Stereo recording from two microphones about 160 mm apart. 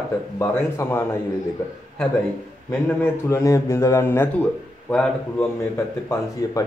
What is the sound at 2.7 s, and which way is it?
Speech, 15° left (ahead or behind).